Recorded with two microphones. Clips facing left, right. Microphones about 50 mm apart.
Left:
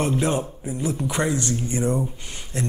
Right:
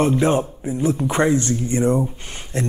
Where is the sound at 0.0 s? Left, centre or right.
Right.